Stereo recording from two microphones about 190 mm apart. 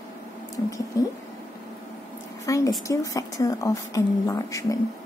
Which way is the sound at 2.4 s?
15° left (ahead or behind).